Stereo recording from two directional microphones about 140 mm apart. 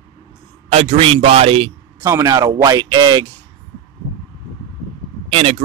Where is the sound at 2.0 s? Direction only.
25° right (ahead or behind).